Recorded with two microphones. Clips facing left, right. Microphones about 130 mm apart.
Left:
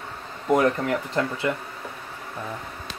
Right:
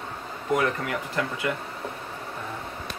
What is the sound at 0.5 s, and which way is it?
Speech, 35° left (ahead or behind).